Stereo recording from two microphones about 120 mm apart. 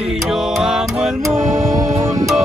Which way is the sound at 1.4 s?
90° right.